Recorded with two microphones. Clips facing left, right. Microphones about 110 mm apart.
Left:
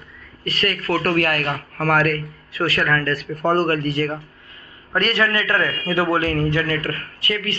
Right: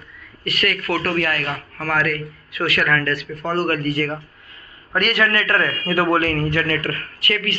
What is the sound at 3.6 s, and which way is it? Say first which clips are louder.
A man's voice: even; 25° left (ahead or behind).